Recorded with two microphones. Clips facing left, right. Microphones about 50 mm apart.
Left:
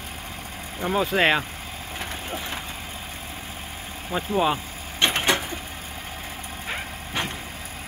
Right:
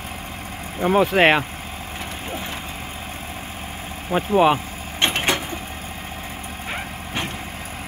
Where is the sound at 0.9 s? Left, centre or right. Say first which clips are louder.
Right 5 dB; right.